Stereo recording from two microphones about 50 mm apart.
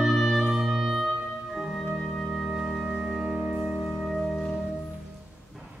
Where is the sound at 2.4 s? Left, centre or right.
Centre.